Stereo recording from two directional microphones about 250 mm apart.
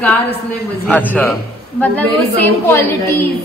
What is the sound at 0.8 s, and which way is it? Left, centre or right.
Speech, centre.